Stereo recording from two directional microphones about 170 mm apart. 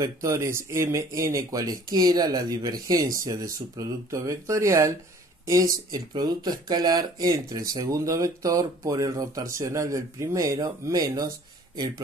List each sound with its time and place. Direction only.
0.0 s speech: 15° right (ahead or behind)